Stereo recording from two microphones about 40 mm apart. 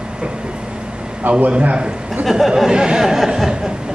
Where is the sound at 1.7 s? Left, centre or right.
Right.